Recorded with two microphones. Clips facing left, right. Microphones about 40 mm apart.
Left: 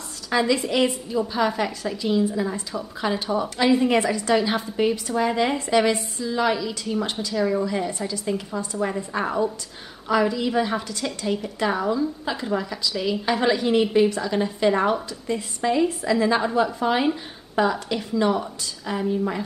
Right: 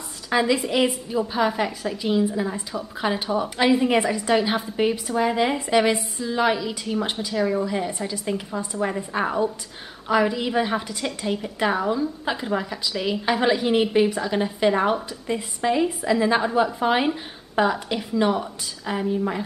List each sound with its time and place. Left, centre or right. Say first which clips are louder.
0.3 s a woman's voice: even; centre